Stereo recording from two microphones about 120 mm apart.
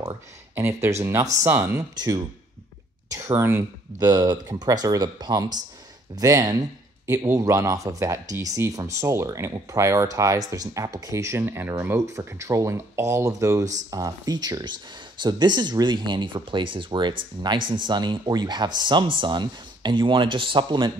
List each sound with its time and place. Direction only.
0.0 s speech: 20° right (ahead or behind); by 20.9 s 40° right (ahead or behind)